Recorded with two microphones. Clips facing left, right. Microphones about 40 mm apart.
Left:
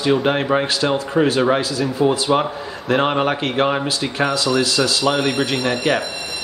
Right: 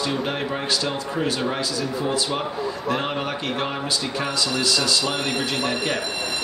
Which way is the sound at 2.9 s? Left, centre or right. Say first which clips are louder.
Left 11 dB; left.